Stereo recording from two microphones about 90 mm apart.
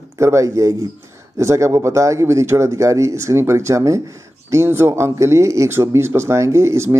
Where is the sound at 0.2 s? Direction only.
35° right (ahead or behind).